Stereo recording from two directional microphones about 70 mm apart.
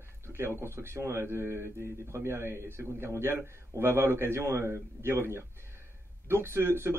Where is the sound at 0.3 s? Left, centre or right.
Right.